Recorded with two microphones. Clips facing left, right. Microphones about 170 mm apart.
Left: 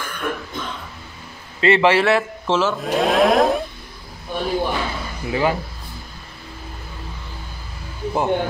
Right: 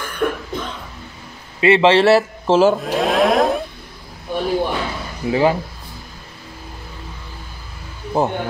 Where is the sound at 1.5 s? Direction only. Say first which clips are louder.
Right 3 dB; 20° right (ahead or behind).